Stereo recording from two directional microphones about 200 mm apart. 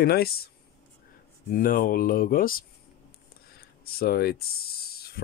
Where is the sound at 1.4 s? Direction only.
45° left (ahead or behind).